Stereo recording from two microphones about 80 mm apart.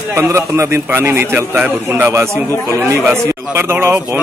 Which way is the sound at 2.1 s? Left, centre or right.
Right.